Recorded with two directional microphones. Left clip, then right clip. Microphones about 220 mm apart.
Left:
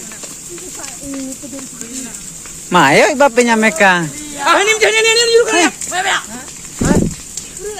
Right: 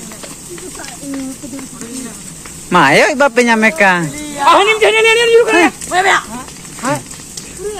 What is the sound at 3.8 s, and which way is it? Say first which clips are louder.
Speech: even; 20° left (ahead or behind).